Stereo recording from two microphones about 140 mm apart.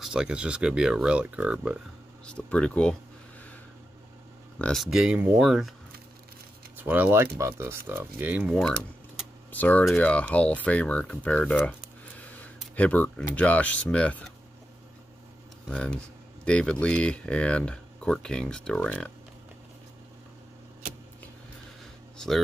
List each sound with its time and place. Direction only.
0.0 s speech: 5° right (ahead or behind)
2.2 s speech: 5° left (ahead or behind)
4.6 s speech: 5° left (ahead or behind)
4.8 s speech: 5° right (ahead or behind)
6.8 s speech: 10° right (ahead or behind)
9.5 s speech: 10° left (ahead or behind)
15.7 s speech: 5° left (ahead or behind)